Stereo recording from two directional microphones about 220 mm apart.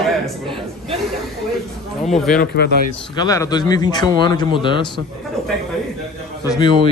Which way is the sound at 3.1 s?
15° left (ahead or behind).